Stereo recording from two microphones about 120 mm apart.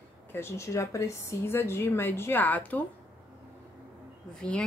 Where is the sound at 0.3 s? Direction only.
20° left (ahead or behind).